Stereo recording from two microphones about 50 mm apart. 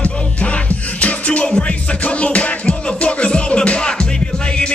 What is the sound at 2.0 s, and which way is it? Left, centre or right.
Music, left.